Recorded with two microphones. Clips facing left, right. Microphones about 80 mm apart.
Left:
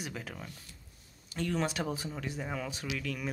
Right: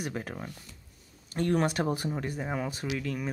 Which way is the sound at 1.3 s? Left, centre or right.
Right.